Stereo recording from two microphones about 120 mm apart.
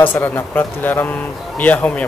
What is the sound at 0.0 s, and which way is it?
Speech, 15° left (ahead or behind).